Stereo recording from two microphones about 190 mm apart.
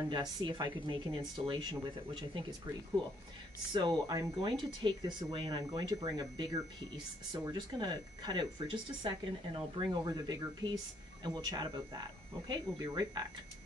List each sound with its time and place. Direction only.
0.1 s speech: 20° right (ahead or behind)
3.7 s speech: 20° right (ahead or behind)
7.5 s speech: 20° right (ahead or behind)